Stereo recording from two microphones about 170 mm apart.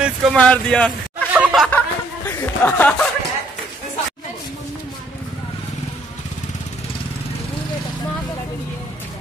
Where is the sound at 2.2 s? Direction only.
10° left (ahead or behind).